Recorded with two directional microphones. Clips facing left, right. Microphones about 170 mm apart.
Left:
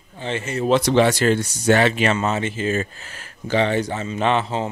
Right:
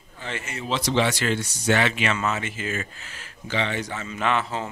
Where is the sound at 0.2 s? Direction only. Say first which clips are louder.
Left 9 dB; 25° left (ahead or behind).